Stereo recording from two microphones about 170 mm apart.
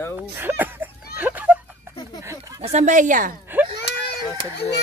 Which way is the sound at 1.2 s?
10° right (ahead or behind).